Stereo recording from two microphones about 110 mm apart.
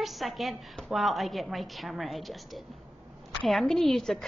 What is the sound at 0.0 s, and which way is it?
A woman's voice, centre (ahead or behind).